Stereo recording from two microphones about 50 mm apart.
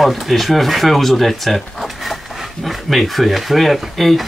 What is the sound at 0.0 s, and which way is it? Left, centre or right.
Speech, centre.